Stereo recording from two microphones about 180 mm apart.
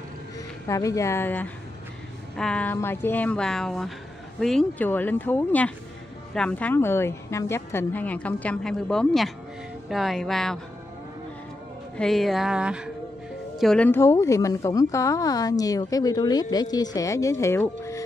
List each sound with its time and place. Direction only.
0.7 s a woman's voice: 15° left (ahead or behind); by 10.6 s centre (ahead or behind)
12.0 s a woman's voice: centre (ahead or behind)